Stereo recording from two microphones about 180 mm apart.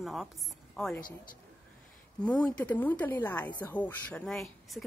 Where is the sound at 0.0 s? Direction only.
Centre (ahead or behind).